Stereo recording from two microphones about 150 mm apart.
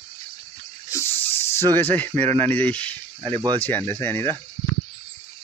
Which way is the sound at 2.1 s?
45° right (ahead or behind).